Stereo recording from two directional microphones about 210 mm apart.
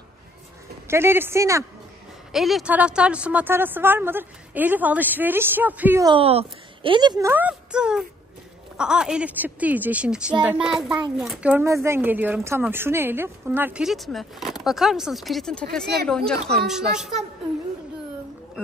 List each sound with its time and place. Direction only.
0.8 s speech: 10° right (ahead or behind)
2.3 s speech: centre (ahead or behind)
6.0 s speech: 25° right (ahead or behind); by 15.6 s centre (ahead or behind)
16.6 s speech: 5° right (ahead or behind)